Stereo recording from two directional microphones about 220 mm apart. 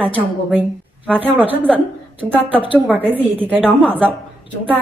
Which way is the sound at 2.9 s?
10° right (ahead or behind).